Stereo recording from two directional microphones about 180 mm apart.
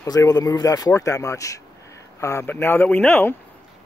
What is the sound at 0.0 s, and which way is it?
Speech, 20° left (ahead or behind).